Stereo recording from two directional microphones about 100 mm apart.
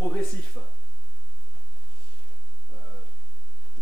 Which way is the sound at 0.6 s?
10° left (ahead or behind).